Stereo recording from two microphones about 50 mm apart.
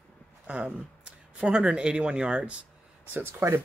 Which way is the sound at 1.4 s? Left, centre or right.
Centre.